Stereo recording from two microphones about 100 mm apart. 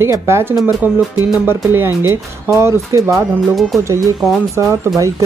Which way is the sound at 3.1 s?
Centre (ahead or behind).